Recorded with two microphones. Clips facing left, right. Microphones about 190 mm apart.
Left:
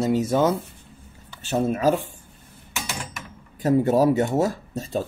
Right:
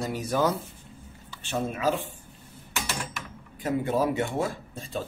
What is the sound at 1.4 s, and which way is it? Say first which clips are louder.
Speech: left 7 dB; 40° left (ahead or behind).